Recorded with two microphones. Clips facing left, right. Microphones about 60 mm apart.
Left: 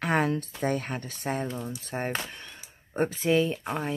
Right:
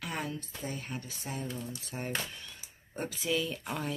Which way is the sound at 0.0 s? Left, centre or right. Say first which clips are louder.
Left 11 dB; left.